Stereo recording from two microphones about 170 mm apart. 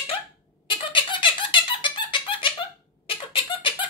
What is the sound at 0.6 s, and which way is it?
Squeak, 30° left (ahead or behind).